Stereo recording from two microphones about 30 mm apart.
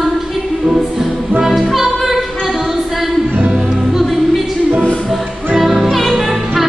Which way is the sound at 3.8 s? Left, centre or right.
Centre.